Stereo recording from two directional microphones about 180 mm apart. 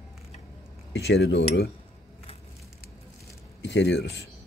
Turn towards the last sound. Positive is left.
turn(degrees=80)